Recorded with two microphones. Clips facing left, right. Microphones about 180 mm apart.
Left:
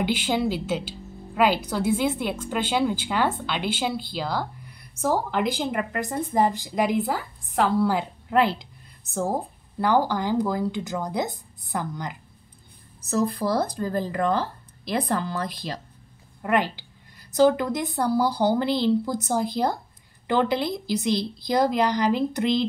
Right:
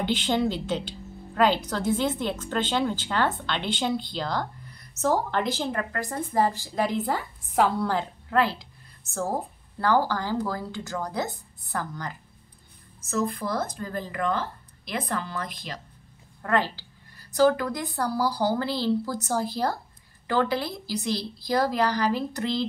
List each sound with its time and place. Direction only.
0.0 s a woman's voice: 10° left (ahead or behind)
7.9 s a woman's voice: 15° left (ahead or behind)
13.0 s speech: 35° left (ahead or behind)
16.4 s speech: 15° left (ahead or behind)